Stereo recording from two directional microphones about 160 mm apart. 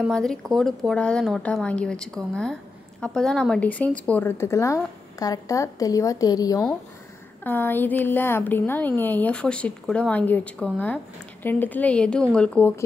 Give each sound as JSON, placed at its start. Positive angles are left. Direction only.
{"t": 0.0, "sound": "a woman's voice", "side_deg": 5}
{"t": 7.4, "sound": "a woman's voice", "side_deg": 10}